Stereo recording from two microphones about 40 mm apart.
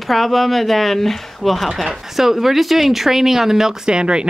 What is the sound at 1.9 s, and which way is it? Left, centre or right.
Speech, centre.